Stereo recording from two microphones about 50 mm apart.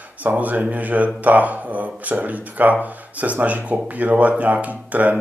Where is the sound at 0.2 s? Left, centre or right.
Right.